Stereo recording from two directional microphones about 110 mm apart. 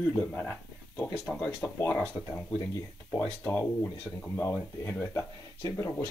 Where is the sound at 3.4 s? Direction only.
20° left (ahead or behind).